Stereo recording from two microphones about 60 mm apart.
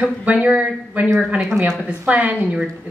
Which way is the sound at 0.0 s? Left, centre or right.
Right.